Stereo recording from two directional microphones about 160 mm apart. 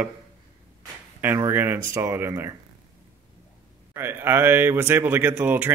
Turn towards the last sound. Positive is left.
turn(degrees=-10)  # may be behind; listen again after turning